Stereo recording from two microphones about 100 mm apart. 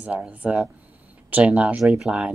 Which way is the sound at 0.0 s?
15° right (ahead or behind).